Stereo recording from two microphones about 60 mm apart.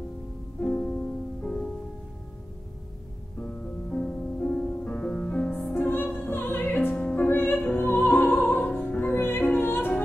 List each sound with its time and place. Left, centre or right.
0.6 s music: centre
3.9 s music: centre
5.8 s music: left